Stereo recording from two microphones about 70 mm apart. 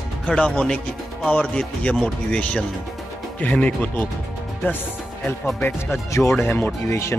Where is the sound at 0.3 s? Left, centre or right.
Centre.